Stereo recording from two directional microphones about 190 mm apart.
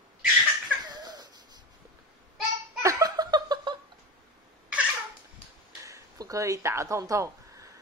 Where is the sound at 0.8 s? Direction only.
20° right (ahead or behind).